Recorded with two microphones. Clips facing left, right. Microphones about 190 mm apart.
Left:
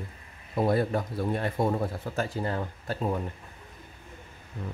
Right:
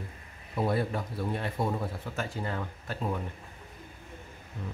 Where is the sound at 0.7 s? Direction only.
45° left (ahead or behind).